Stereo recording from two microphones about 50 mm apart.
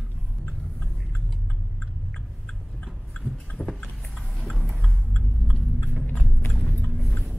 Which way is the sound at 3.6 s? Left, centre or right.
Right.